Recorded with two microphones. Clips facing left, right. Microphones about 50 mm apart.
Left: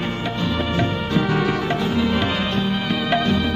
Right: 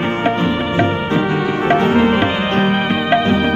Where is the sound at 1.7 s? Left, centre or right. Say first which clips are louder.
Right 8 dB; right.